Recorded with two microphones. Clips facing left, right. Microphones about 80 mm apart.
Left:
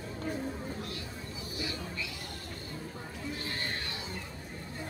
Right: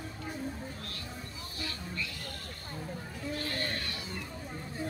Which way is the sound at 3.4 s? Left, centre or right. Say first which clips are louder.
Right 3 dB; left.